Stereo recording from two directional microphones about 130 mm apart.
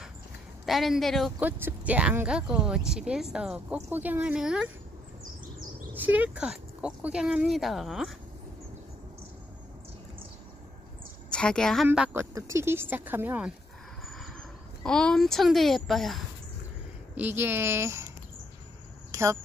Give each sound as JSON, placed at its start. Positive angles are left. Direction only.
{"t": 0.7, "sound": "speech", "side_deg": 0}
{"t": 1.4, "sound": "speech", "side_deg": -15}
{"t": 5.9, "sound": "speech", "side_deg": -10}
{"t": 11.2, "sound": "a woman's voice", "side_deg": 5}
{"t": 12.1, "sound": "speech", "side_deg": -20}
{"t": 14.0, "sound": "vehicle", "side_deg": 0}
{"t": 14.8, "sound": "speech", "side_deg": 5}
{"t": 17.2, "sound": "speech", "side_deg": -15}
{"t": 19.1, "sound": "a sound", "side_deg": -25}